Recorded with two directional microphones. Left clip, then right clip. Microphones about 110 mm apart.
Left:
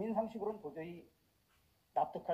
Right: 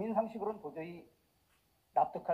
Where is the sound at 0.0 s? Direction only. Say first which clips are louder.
Right 3 dB; 35° left (ahead or behind).